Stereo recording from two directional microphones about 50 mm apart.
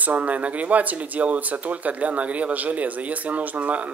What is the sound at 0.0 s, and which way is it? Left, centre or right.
Speech, right.